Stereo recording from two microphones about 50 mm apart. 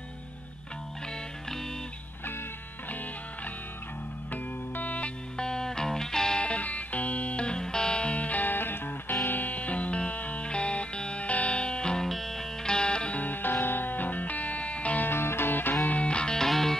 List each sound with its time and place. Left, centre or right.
4.3 s music: left
5.4 s music: centre
6.4 s music: left
12.1 s music: centre
13.2 s music: left
15.0 s music: left
15.8 s music: left
16.4 s music: centre